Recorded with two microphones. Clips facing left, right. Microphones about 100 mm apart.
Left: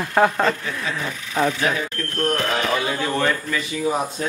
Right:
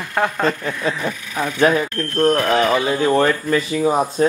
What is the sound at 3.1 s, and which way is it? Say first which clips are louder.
Speech: right 6 dB; 35° right (ahead or behind).